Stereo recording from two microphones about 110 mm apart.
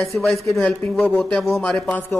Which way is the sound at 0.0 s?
Centre (ahead or behind).